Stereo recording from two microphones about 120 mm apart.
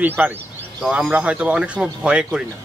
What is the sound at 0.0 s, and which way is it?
Speech, 15° right (ahead or behind).